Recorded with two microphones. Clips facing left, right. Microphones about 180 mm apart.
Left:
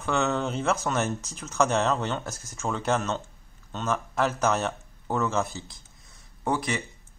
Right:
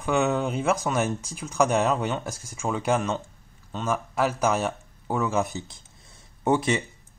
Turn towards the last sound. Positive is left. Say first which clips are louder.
# right 5 dB
turn(degrees=-20)  # may be behind; listen again after turning